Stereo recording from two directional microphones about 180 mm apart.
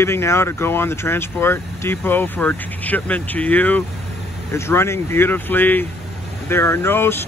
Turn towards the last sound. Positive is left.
turn(degrees=15)  # may be behind; listen again after turning